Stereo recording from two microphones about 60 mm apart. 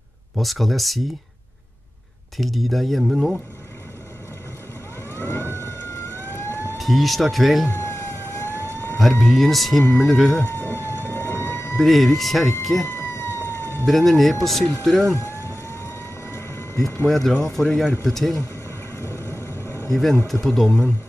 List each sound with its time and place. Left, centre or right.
0.4 s speech: centre
2.3 s speech: centre
5.1 s vehicle: left
6.8 s speech: centre
7.7 s vehicle: left
9.2 s speech: centre
10.4 s vehicle: left
11.8 s speech: centre
12.8 s emergency vehicle: left
13.8 s speech: centre
15.1 s vehicle: left
17.1 s speech: centre
18.9 s vehicle: left
19.9 s speech: centre